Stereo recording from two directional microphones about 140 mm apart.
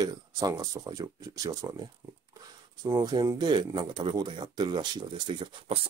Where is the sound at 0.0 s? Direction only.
25° right (ahead or behind).